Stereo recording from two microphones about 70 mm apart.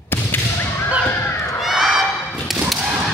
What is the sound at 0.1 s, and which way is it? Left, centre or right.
Whip, left.